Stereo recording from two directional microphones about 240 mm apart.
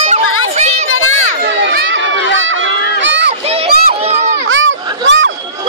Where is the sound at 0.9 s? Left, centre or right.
Left.